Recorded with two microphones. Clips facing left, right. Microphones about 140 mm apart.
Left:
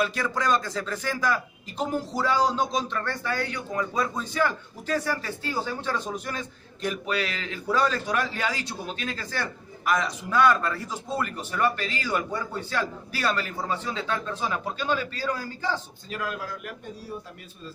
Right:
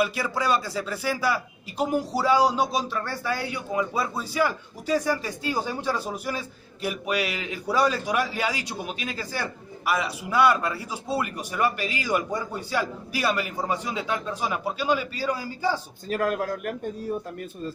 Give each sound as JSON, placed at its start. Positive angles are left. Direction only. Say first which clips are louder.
{"t": 0.0, "sound": "a man's voice", "louder": "right 1 dB", "side_deg": -10}
{"t": 16.1, "sound": "a man's voice", "louder": "right 7 dB", "side_deg": -50}